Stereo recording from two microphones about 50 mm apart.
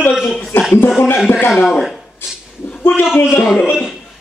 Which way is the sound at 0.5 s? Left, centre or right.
Left.